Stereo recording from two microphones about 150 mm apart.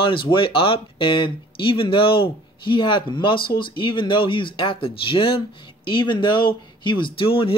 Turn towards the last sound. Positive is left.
turn(degrees=35)  # may be behind; listen again after turning